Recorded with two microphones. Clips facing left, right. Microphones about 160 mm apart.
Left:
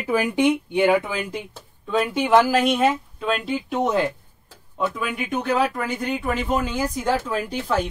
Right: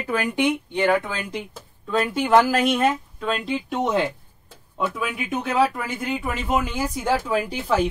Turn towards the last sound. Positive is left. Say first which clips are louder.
# right 2 dB
turn(degrees=-10)  # may be behind; listen again after turning